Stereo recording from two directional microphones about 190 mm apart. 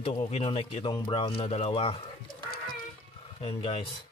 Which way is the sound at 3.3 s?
30° left (ahead or behind).